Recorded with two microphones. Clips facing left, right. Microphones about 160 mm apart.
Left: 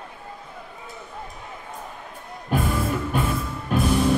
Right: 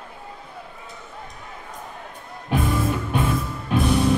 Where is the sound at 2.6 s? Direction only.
Centre (ahead or behind).